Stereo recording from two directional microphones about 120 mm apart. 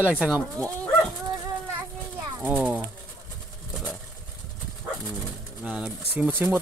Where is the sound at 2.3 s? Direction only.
10° right (ahead or behind).